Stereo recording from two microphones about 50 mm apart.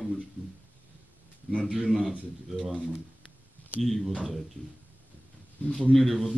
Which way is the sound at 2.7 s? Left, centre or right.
Right.